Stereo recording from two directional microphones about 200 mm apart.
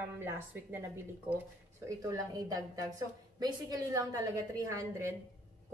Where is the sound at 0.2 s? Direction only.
10° right (ahead or behind).